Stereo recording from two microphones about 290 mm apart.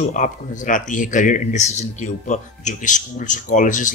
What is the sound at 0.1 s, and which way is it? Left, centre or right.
Speech, left.